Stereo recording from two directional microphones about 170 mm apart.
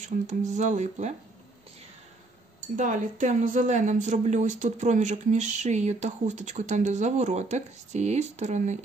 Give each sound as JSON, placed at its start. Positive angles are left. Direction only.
{"t": 0.0, "sound": "speech", "side_deg": -45}
{"t": 2.7, "sound": "speech", "side_deg": -50}